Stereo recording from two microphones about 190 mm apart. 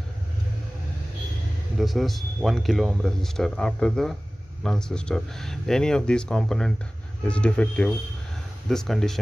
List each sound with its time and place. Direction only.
1.8 s speech: centre (ahead or behind)